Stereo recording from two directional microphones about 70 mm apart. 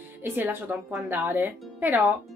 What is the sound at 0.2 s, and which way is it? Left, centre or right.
Speech, right.